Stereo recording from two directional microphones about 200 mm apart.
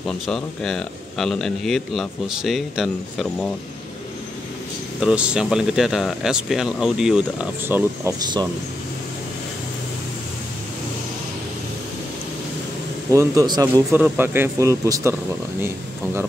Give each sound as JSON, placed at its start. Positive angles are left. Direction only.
{"t": 0.0, "sound": "speech", "side_deg": 0}
{"t": 5.0, "sound": "speech", "side_deg": -5}
{"t": 13.1, "sound": "speech", "side_deg": -15}